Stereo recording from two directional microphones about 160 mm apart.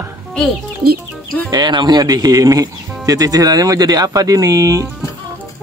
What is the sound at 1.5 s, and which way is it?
Speech, 25° right (ahead or behind).